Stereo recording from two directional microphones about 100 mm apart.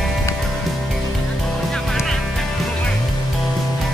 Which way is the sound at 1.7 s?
5° left (ahead or behind).